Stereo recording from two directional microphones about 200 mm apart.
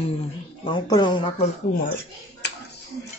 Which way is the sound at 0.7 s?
20° left (ahead or behind).